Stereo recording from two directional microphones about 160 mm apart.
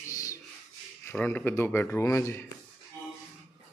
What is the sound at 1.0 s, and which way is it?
Speech, 10° left (ahead or behind).